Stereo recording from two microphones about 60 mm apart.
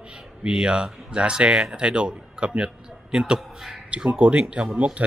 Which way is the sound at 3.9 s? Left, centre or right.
Right.